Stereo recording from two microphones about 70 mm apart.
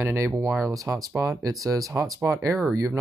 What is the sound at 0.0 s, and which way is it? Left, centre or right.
Speech, right.